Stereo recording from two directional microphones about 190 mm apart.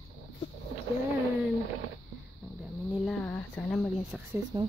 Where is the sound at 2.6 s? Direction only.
5° left (ahead or behind).